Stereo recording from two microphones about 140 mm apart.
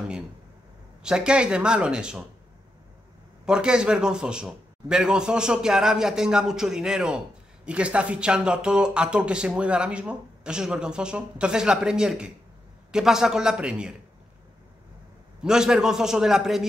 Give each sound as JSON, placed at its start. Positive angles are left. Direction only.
{"t": 1.0, "sound": "speech", "side_deg": -5}
{"t": 3.4, "sound": "a man's voice", "side_deg": -5}
{"t": 15.4, "sound": "a man's voice", "side_deg": -5}